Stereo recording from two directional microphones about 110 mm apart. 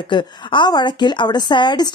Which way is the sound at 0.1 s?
45° left (ahead or behind).